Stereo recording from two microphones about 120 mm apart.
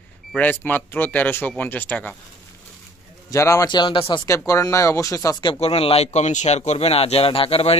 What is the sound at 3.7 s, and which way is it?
Speech, 40° left (ahead or behind).